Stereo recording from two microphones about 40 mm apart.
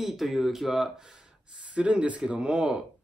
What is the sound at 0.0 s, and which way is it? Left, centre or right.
Speech, centre.